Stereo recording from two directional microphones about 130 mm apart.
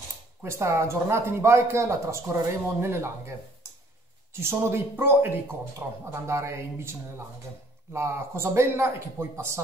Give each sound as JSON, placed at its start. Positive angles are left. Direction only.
{"t": 0.4, "sound": "speech", "side_deg": -20}